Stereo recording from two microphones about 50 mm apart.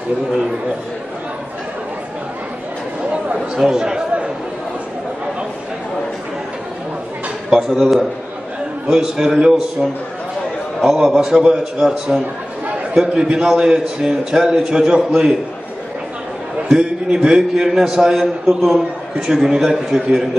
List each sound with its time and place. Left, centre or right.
3.3 s speech: centre
3.7 s a man's voice: centre
7.4 s speech: centre
8.8 s a man's voice: centre
16.6 s a man's voice: centre